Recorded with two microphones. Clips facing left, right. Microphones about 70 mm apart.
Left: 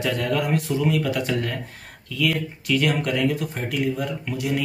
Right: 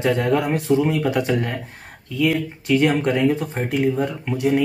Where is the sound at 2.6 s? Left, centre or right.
Right.